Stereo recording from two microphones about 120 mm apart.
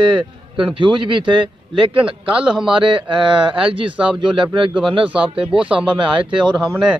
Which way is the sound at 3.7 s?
45° right (ahead or behind).